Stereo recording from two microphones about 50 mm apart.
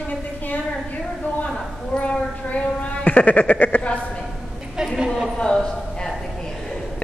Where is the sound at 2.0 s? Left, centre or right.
Left.